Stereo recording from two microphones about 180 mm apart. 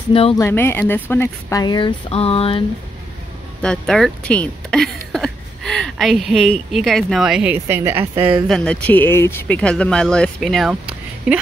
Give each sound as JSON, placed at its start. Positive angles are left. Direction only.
{"t": 0.1, "sound": "speech", "side_deg": 30}
{"t": 0.4, "sound": "speech", "side_deg": 15}
{"t": 3.6, "sound": "speech", "side_deg": 5}
{"t": 8.5, "sound": "speech", "side_deg": 5}